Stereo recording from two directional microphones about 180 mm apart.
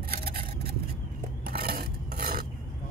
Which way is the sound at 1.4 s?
55° right (ahead or behind).